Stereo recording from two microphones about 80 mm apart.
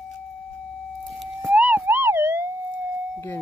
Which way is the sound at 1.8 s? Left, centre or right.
Right.